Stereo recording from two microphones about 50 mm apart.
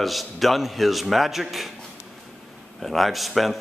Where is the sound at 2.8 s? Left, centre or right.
Centre.